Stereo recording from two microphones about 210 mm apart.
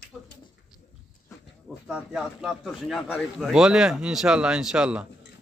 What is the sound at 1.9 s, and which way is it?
Speech, centre (ahead or behind).